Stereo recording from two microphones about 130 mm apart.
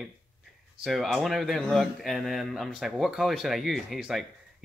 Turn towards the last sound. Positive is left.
turn(degrees=0)  # may be behind; listen again after turning